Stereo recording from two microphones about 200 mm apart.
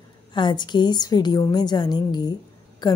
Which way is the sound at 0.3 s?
20° left (ahead or behind).